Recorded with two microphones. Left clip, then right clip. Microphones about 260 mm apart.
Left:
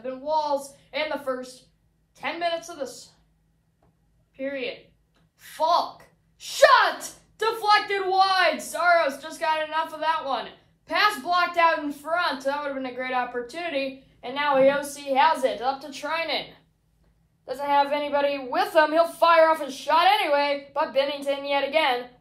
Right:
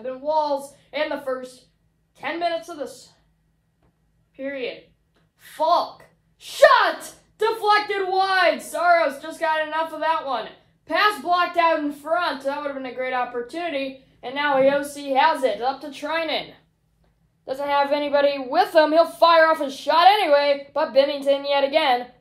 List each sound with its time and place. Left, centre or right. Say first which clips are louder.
0.0 s a sound: right 3 dB; right
0.9 s a child's voice: right 3 dB; right
2.1 s a child's voice: right 2 dB; right
4.4 s a child's voice: right 1 dB; right
8.2 s a child's voice: right 2 dB; right
17.5 s a woman's voice: right 1 dB; right